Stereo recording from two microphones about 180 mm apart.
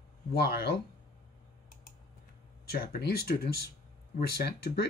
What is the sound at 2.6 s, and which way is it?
Speech, 60° left (ahead or behind).